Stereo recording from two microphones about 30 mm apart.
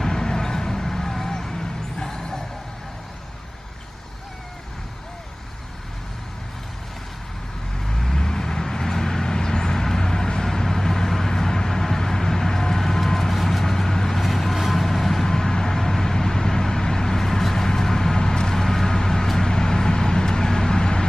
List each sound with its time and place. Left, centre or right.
0.0 s vehicle: left
8.2 s vehicle: centre
14.2 s vehicle: centre; by 18.5 s left
18.5 s vehicle: centre